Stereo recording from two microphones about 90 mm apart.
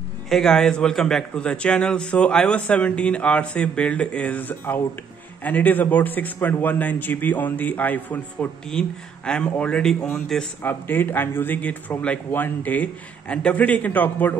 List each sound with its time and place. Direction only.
0.3 s a man's voice: 5° left (ahead or behind)
10.6 s a man's voice: 20° left (ahead or behind)